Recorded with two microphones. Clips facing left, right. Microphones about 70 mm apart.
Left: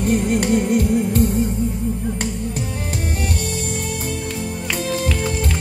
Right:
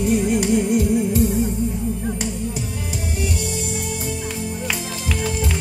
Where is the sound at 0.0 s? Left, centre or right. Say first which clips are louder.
Even; left.